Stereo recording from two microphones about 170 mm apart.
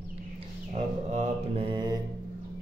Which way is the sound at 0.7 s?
40° right (ahead or behind).